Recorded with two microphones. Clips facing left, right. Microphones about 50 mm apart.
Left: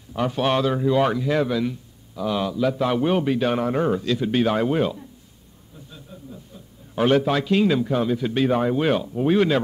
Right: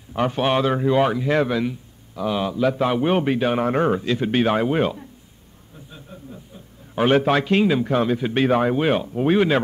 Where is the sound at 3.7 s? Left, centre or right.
Right.